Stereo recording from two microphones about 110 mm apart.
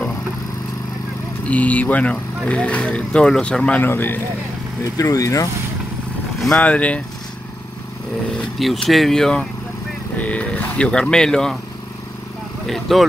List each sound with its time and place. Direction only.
1.4 s speech: 15° left (ahead or behind)
4.9 s speech: 30° left (ahead or behind)
6.4 s speech: 10° left (ahead or behind)
8.5 s speech: centre (ahead or behind)
12.6 s speech: centre (ahead or behind)